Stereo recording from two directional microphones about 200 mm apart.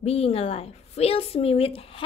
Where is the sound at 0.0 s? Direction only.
30° left (ahead or behind).